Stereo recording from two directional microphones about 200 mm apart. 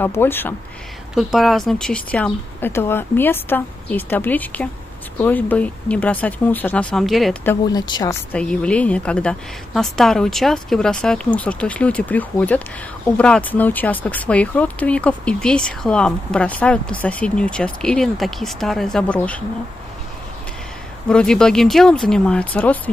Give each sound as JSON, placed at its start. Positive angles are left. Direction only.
{"t": 0.0, "sound": "a woman's voice", "side_deg": 10}
{"t": 1.1, "sound": "a woman's voice", "side_deg": 0}
{"t": 7.4, "sound": "speech", "side_deg": 20}
{"t": 8.3, "sound": "speech", "side_deg": 5}
{"t": 21.1, "sound": "speech", "side_deg": 5}